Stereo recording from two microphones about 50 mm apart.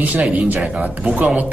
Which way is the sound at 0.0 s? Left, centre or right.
Right.